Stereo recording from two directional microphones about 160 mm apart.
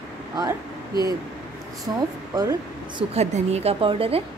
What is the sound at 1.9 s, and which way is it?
Speech, 25° right (ahead or behind).